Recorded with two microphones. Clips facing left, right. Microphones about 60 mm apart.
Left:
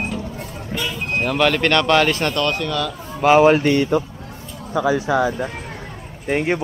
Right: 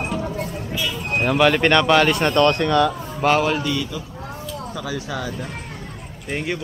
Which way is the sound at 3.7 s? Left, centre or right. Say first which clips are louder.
Left 8 dB; left.